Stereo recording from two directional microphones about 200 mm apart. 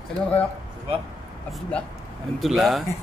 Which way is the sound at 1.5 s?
5° left (ahead or behind).